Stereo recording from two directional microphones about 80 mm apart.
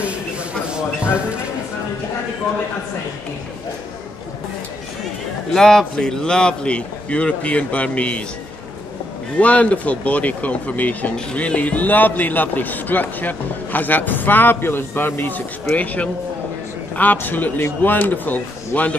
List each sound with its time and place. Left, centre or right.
5.5 s a man's voice: centre
9.4 s speech: centre